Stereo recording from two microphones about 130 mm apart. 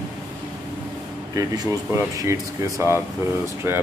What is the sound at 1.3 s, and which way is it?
Speech, 30° right (ahead or behind).